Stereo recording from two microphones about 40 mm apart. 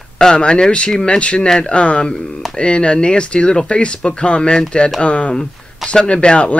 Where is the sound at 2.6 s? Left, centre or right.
Left.